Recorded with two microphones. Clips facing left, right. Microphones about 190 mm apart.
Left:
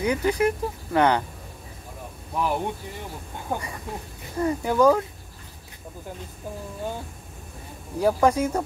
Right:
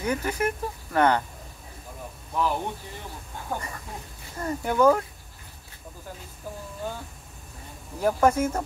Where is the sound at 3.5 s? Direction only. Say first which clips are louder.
Left 3 dB; 20° left (ahead or behind).